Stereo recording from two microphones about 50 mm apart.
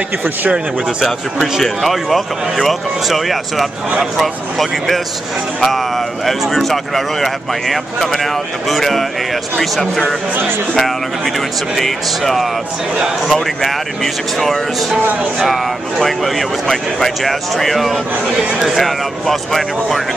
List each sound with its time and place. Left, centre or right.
0.2 s speech: right
1.0 s speech: centre
6.2 s speech: centre
11.7 s speech: centre